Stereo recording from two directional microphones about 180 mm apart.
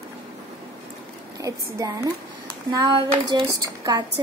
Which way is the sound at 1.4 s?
20° right (ahead or behind).